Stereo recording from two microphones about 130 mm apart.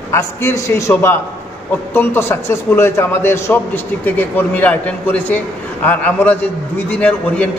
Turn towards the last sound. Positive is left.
turn(degrees=10)  # may be behind; listen again after turning